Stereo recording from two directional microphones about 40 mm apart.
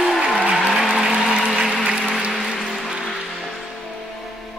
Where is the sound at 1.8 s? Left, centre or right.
Right.